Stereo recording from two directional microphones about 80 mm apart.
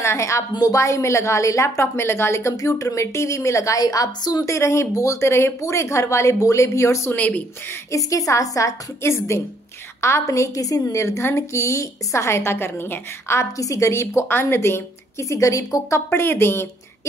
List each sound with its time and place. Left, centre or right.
0.0 s a woman's voice: left
4.5 s a woman's voice: left
7.2 s a woman's voice: centre
7.9 s a woman's voice: left
16.1 s a woman's voice: left